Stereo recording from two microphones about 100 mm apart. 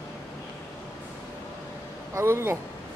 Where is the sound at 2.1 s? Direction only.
25° right (ahead or behind).